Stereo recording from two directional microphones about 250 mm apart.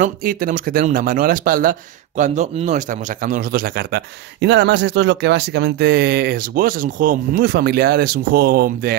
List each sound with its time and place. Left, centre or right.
0.0 s speech: right